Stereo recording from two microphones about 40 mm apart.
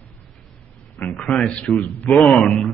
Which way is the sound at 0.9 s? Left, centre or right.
Left.